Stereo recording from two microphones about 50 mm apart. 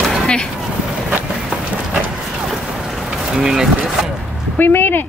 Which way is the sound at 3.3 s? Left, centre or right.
Centre.